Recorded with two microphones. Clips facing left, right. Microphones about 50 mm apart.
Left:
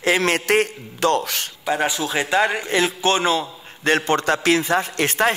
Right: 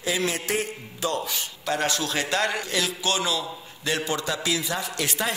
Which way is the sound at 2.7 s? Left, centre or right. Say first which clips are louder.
Left 7 dB; left.